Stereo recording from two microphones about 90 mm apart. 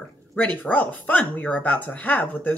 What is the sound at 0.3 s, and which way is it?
Speech, 20° left (ahead or behind).